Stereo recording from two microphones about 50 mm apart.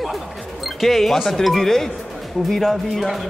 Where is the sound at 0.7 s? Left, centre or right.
Centre.